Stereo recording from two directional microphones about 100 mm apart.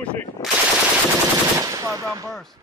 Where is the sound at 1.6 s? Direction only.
30° right (ahead or behind).